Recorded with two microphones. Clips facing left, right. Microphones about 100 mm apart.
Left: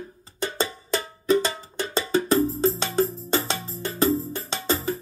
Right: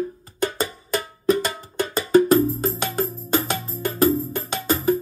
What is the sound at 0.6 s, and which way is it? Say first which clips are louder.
Music: right 1 dB; 30° left (ahead or behind).